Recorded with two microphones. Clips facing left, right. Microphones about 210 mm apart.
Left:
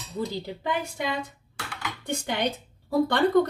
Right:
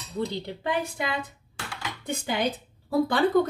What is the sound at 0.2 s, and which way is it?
A woman's voice, centre (ahead or behind).